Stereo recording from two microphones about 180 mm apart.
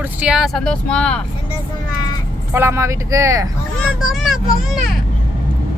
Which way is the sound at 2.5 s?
15° right (ahead or behind).